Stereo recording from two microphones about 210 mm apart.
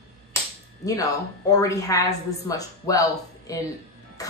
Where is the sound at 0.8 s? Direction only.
15° left (ahead or behind).